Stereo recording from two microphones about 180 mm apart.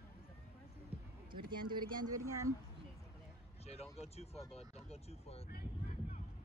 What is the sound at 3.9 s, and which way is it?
Speech, 35° left (ahead or behind).